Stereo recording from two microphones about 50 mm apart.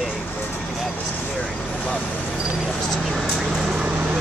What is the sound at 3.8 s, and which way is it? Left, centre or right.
Vehicle, right.